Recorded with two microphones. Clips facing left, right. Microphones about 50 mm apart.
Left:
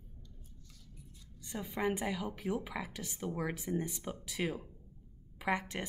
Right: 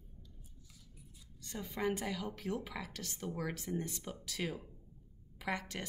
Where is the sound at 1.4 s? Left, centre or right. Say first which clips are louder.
Left 3 dB; centre.